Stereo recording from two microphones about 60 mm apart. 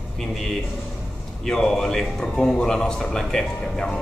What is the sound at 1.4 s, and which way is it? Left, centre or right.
A man's voice, centre.